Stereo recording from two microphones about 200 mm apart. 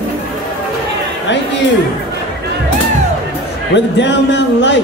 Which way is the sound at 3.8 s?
60° left (ahead or behind).